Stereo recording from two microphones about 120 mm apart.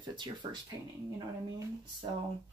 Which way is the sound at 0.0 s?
40° right (ahead or behind).